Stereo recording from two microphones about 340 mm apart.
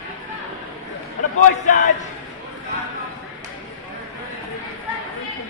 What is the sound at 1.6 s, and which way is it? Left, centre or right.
Speech, left.